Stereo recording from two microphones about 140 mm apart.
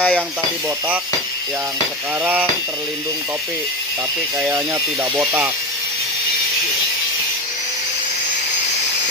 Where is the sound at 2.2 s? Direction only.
10° right (ahead or behind).